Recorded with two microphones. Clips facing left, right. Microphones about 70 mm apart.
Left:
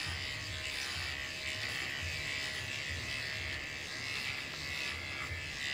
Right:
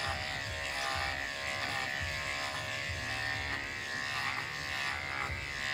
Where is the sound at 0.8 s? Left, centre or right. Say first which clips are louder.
Right 8 dB; right.